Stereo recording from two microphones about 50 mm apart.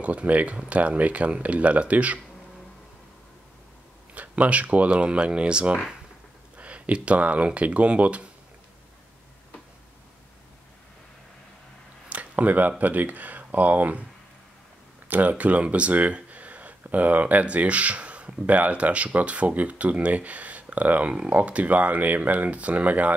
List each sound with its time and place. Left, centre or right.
0.0 s speech: right
4.1 s speech: right
12.1 s speech: right
15.0 s speech: right